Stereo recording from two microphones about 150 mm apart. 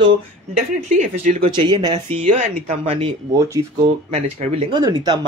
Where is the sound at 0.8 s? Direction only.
55° right (ahead or behind).